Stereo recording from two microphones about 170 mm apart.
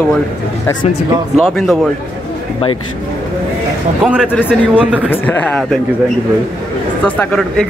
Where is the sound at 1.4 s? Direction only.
Centre (ahead or behind).